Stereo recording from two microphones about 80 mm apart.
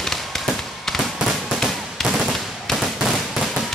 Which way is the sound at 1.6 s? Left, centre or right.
Centre.